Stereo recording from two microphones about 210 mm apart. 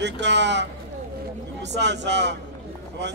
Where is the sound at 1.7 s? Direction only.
55° right (ahead or behind).